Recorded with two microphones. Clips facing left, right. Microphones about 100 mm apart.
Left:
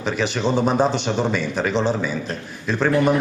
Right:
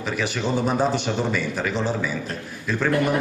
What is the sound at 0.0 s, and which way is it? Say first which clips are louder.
A man's voice: left 4 dB; 20° left (ahead or behind).